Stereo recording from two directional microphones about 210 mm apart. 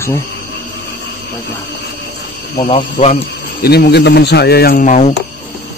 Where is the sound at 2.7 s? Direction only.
30° left (ahead or behind).